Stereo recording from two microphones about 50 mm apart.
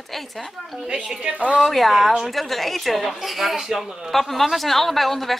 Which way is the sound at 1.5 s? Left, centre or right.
Centre.